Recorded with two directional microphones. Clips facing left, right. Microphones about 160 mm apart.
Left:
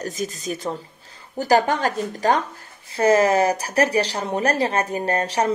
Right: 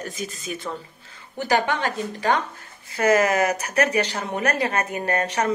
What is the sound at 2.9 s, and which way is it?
Speech, 30° left (ahead or behind).